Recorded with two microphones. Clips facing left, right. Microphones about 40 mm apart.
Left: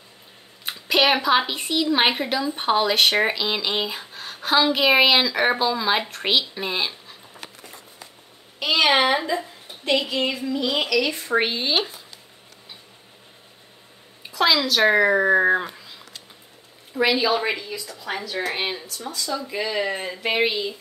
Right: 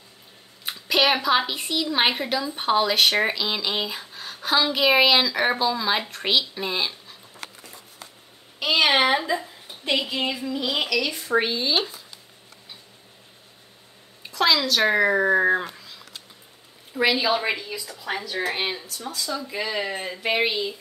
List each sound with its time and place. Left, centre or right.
0.7 s a woman's voice: centre
6.0 s a sound: centre
8.5 s a woman's voice: centre
11.3 s speech: left
14.2 s a woman's voice: centre